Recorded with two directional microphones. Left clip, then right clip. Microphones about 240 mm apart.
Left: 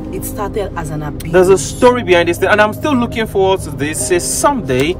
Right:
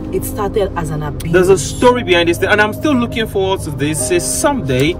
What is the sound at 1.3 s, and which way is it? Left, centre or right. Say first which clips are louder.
Speech: left 1 dB; centre.